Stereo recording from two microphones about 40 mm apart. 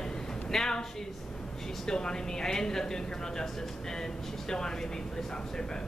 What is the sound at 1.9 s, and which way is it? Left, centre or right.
A woman's voice, centre.